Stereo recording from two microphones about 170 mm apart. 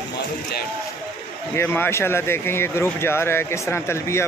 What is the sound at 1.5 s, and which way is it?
Speech, 15° left (ahead or behind).